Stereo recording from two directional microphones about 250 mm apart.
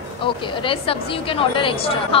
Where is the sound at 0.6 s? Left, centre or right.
Left.